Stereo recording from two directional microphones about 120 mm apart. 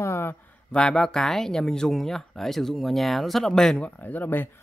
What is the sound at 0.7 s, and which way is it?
Speech, 5° left (ahead or behind).